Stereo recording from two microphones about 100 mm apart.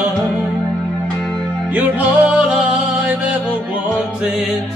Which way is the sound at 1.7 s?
15° right (ahead or behind).